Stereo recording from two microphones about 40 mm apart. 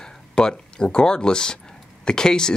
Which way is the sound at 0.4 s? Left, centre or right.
Centre.